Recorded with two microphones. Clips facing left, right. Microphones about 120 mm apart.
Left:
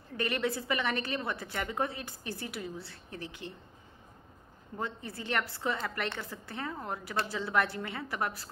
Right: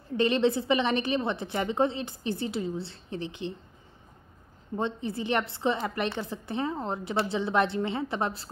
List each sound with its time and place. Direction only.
0.1 s a woman's voice: 25° right (ahead or behind)
4.7 s a woman's voice: 25° right (ahead or behind)